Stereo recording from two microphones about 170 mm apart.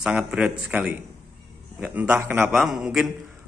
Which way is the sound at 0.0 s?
5° right (ahead or behind).